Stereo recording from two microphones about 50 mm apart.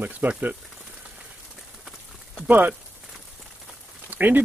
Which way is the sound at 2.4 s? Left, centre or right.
Right.